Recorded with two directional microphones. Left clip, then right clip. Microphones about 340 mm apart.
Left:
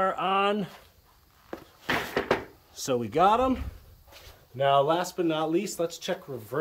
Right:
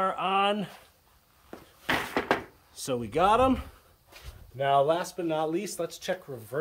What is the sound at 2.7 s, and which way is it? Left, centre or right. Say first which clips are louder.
Speech: left 3 dB; centre.